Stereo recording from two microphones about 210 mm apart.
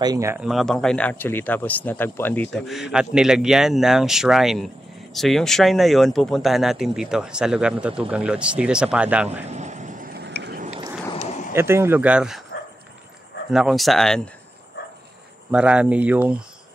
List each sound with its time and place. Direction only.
0.0 s speech: 15° right (ahead or behind)
0.5 s speech: centre (ahead or behind)
9.4 s vehicle: 35° right (ahead or behind); by 10.6 s 50° right (ahead or behind)
11.1 s a sound: 35° left (ahead or behind)
11.5 s speech: 10° right (ahead or behind)
13.5 s speech: centre (ahead or behind)
15.5 s speech: 5° right (ahead or behind)